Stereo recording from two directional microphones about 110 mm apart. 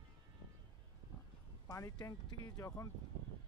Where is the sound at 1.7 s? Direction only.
30° left (ahead or behind).